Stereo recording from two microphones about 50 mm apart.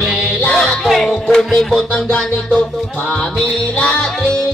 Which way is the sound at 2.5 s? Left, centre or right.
Left.